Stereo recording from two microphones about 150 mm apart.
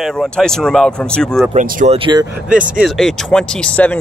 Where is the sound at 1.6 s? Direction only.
60° right (ahead or behind).